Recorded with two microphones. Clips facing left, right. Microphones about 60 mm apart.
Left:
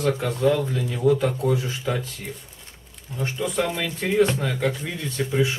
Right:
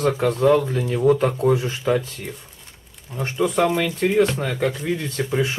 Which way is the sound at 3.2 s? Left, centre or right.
Right.